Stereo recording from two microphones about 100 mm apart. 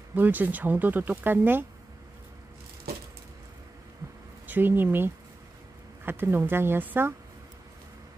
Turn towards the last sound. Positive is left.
turn(degrees=-20)  # may be behind; listen again after turning